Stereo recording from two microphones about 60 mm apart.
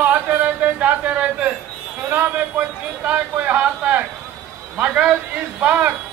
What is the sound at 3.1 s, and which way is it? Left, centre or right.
Speech, right.